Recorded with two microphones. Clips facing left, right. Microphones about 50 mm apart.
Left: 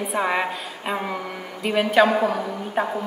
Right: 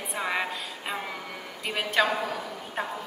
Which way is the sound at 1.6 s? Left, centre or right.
Centre.